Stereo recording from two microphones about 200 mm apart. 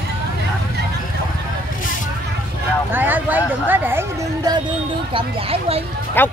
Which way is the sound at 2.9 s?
10° right (ahead or behind).